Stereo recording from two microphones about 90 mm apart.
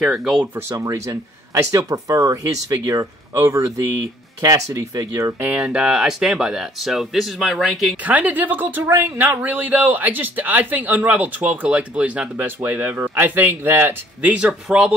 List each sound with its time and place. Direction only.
0.0 s speech: 5° right (ahead or behind)
0.6 s speech: 35° right (ahead or behind)
5.6 s speech: 10° right (ahead or behind)
7.9 s speech: 15° right (ahead or behind)
14.3 s speech: 10° right (ahead or behind)